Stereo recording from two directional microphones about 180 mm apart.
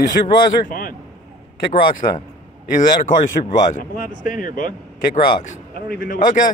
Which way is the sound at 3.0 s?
45° left (ahead or behind).